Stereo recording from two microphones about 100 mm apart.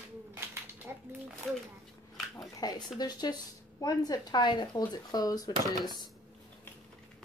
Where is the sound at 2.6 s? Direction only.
40° left (ahead or behind).